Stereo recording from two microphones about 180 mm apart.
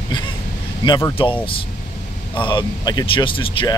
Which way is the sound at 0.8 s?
25° left (ahead or behind).